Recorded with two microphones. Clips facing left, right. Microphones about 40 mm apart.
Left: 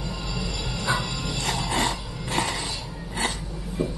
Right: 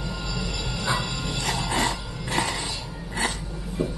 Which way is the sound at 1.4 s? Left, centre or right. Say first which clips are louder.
Even; centre.